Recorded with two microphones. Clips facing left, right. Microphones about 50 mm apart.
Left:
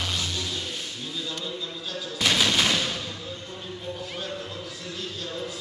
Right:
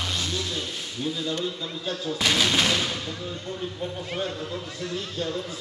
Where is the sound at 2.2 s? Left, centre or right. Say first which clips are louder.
Even; centre.